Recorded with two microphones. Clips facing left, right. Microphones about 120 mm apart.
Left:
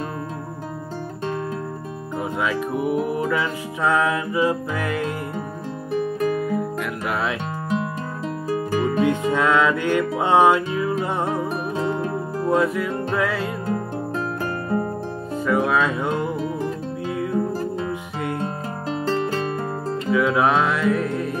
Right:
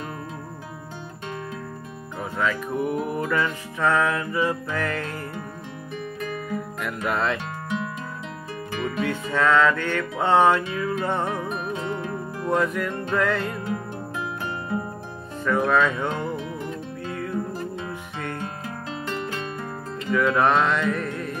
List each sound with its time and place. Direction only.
2.3 s music: 15° left (ahead or behind)
6.1 s music: 40° left (ahead or behind)
6.8 s speech: 5° left (ahead or behind)
8.5 s music: 40° left (ahead or behind)
9.0 s music: 15° left (ahead or behind)
11.4 s music: 35° left (ahead or behind)
12.4 s music: 5° left (ahead or behind)
14.4 s music: 45° left (ahead or behind)
15.4 s music: 10° left (ahead or behind)
17.5 s music: 35° left (ahead or behind)
20.1 s music: 5° left (ahead or behind)